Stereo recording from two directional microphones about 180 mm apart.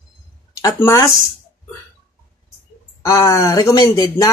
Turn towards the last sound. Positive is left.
turn(degrees=20)  # may be behind; listen again after turning